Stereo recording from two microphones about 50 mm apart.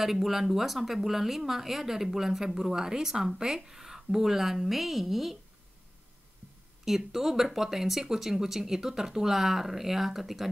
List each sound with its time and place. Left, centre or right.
0.0 s speech: centre
6.8 s speech: centre